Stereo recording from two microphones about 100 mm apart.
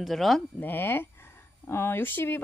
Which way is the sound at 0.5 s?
20° left (ahead or behind).